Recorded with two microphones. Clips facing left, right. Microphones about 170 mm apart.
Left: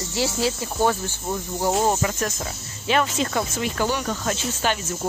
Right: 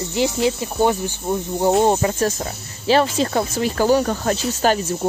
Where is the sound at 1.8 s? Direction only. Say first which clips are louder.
Right 5 dB; 30° right (ahead or behind).